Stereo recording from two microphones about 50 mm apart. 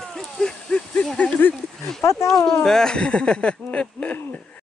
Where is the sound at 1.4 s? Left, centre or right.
Left.